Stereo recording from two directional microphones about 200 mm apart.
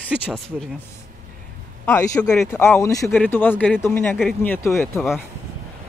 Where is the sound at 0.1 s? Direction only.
5° right (ahead or behind).